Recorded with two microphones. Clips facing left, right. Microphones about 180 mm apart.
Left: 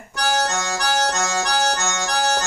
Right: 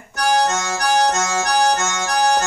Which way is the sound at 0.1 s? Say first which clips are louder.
Right 4 dB; 50° right (ahead or behind).